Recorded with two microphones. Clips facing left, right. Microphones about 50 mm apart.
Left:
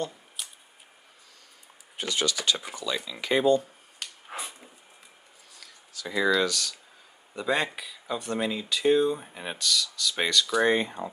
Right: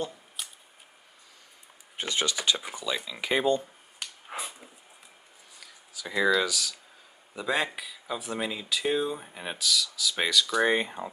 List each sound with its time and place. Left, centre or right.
0.4 s scissors: centre
2.0 s speech: right
4.0 s dog: centre
5.6 s speech: centre